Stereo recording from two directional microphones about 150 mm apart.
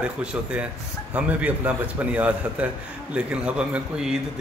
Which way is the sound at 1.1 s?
10° right (ahead or behind).